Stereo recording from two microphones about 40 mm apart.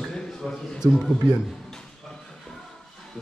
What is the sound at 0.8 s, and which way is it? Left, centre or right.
Speech, centre.